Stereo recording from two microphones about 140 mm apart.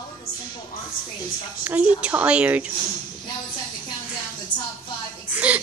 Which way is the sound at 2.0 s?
10° right (ahead or behind).